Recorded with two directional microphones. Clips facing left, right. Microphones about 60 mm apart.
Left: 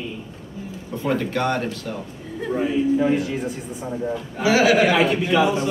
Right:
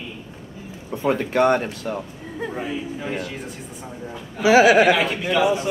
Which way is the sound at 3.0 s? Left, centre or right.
Centre.